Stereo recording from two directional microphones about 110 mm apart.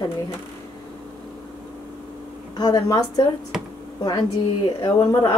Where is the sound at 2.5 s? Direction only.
40° left (ahead or behind).